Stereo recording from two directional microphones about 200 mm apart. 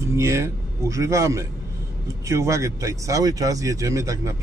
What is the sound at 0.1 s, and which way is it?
A man's voice, 15° right (ahead or behind).